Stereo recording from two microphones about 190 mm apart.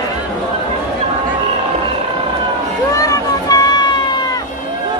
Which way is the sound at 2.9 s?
15° left (ahead or behind).